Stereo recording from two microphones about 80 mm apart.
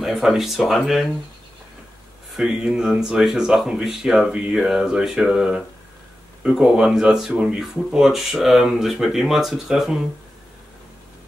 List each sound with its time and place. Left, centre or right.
0.0 s speech: centre
2.3 s speech: centre